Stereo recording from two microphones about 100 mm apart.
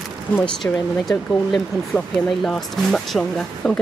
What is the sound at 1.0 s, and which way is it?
Speech, 5° left (ahead or behind).